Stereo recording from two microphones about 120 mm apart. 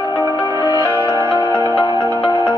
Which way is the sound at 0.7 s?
25° right (ahead or behind).